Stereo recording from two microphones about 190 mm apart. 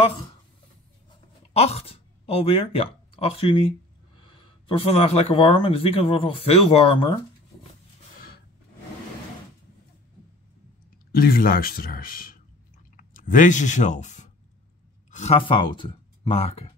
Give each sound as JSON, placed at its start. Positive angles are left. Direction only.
{"t": 1.5, "sound": "speech", "side_deg": 35}
{"t": 11.1, "sound": "speech", "side_deg": 50}